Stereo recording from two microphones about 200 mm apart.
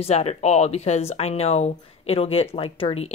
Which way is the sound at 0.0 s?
30° left (ahead or behind).